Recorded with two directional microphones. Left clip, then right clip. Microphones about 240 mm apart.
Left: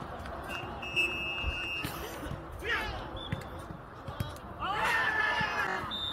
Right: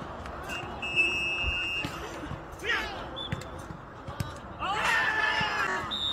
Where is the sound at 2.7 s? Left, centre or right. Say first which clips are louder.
Right 3 dB; right.